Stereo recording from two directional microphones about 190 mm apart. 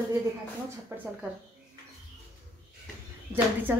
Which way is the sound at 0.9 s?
10° right (ahead or behind).